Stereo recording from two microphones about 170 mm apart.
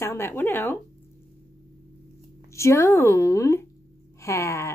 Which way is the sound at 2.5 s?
15° left (ahead or behind).